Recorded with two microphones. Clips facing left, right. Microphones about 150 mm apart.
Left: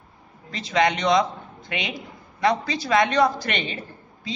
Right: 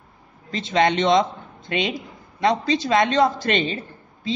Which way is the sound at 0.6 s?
25° right (ahead or behind).